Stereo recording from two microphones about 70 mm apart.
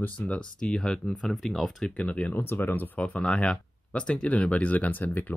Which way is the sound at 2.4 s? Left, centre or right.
Left.